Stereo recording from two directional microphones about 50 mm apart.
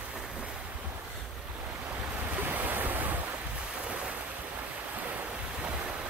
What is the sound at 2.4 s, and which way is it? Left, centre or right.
Waves, right.